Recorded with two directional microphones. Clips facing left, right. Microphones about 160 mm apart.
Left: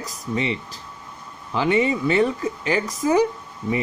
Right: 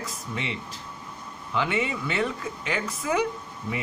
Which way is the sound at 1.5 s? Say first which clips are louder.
Left 7 dB; 35° left (ahead or behind).